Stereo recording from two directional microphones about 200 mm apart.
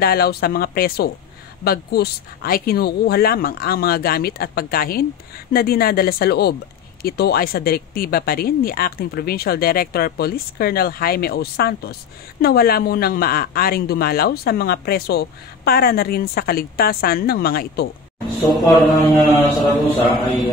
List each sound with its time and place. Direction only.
0.0 s speech: 50° left (ahead or behind)
18.6 s mantra: centre (ahead or behind)